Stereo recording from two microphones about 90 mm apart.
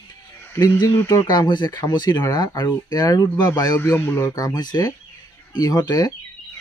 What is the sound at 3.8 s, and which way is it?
Speech, 25° left (ahead or behind).